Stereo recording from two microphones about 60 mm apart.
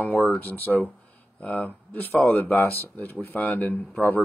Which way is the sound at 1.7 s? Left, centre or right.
Left.